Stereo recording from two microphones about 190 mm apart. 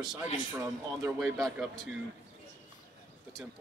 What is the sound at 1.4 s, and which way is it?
Speech, centre (ahead or behind).